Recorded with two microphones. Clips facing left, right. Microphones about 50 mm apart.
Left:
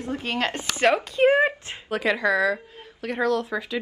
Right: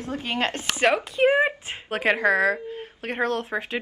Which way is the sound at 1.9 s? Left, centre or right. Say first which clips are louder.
Right 1 dB; right.